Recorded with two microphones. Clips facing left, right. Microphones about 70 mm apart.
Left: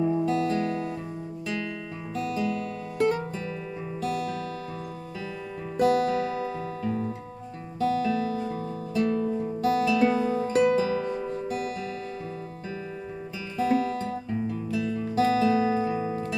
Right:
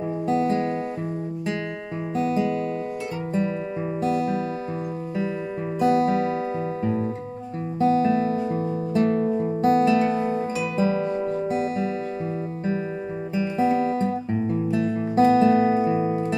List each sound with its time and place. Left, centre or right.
0.3 s music: right
2.1 s music: right
4.0 s music: right
5.8 s music: right
6.8 s guitar: right
7.8 s music: right
10.5 s music: left
10.8 s music: right
13.4 s music: right